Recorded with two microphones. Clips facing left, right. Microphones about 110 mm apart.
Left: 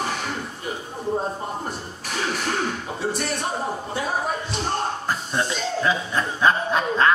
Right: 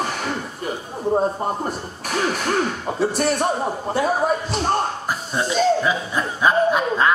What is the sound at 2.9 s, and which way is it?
Speech, 55° right (ahead or behind).